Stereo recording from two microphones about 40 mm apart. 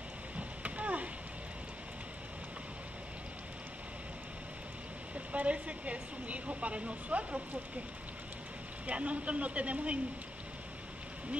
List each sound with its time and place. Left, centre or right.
0.4 s a sound: right
5.1 s speech: right
8.8 s speech: right